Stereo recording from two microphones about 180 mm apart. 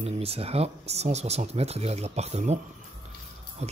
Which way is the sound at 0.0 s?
35° right (ahead or behind).